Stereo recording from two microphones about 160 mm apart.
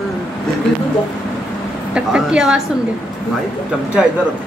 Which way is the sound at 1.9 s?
5° right (ahead or behind).